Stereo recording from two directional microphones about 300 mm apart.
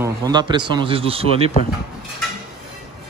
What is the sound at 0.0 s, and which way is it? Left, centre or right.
Speech, centre.